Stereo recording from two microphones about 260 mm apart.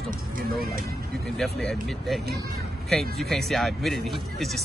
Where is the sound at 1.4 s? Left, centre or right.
Centre.